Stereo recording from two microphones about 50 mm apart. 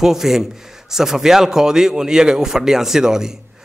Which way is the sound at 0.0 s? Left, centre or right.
Centre.